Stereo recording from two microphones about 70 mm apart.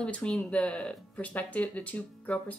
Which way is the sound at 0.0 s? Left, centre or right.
Centre.